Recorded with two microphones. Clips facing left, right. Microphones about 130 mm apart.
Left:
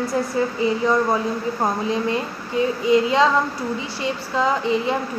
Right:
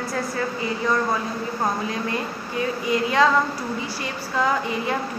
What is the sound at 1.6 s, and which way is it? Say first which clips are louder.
A woman's voice: left 3 dB; 20° left (ahead or behind).